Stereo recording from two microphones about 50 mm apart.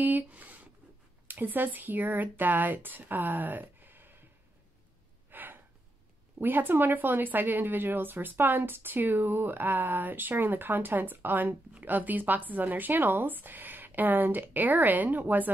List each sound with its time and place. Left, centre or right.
0.0 s speech: right
5.3 s gasp: right
6.4 s speech: right